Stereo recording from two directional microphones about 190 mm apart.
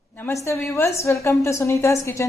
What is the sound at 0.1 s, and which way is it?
A woman's voice, 15° left (ahead or behind).